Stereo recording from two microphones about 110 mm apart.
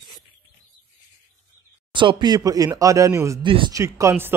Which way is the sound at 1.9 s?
45° right (ahead or behind).